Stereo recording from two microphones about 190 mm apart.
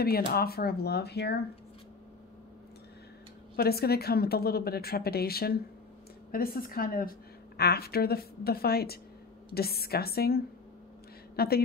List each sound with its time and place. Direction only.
0.0 s a woman's voice: 55° left (ahead or behind)
3.5 s a woman's voice: 55° left (ahead or behind)